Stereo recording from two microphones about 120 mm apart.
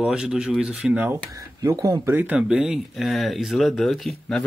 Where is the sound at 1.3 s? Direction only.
30° right (ahead or behind).